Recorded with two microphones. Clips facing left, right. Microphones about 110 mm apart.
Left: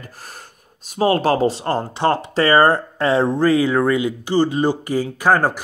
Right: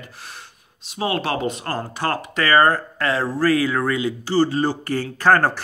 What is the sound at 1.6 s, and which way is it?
Speech, 25° left (ahead or behind).